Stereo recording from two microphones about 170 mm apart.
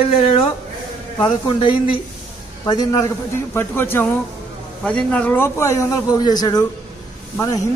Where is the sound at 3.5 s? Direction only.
15° left (ahead or behind).